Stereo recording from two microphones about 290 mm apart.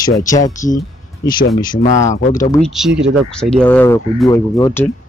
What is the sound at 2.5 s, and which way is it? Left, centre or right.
Speech, centre.